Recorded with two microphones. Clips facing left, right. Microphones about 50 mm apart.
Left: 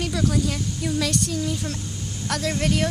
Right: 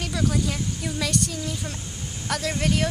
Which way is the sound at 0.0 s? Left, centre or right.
Centre.